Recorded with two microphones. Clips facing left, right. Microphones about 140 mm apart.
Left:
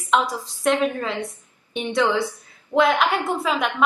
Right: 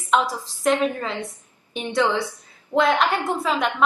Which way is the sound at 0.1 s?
5° right (ahead or behind).